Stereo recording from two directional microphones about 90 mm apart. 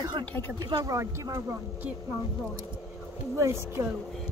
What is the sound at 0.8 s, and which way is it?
Speech, 35° right (ahead or behind).